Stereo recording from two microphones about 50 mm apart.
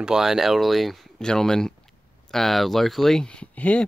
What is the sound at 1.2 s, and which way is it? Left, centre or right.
Speech, centre.